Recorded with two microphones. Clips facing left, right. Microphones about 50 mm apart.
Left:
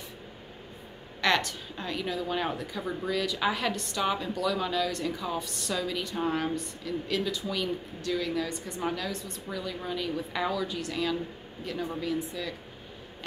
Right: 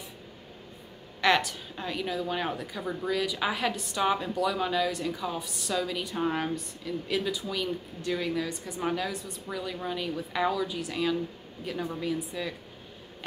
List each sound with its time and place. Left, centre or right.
1.2 s a woman's voice: centre
8.0 s speech: centre
8.4 s a woman's voice: centre